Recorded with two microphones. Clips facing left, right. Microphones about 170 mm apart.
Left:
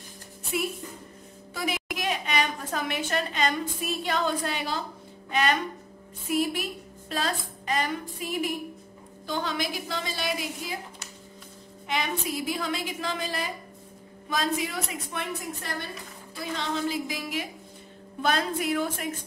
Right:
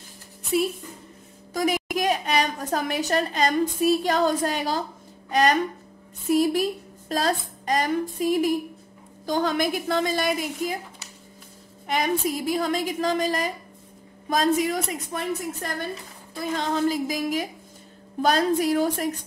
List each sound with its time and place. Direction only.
1.5 s a woman's voice: 45° right (ahead or behind)
11.9 s a woman's voice: 40° right (ahead or behind)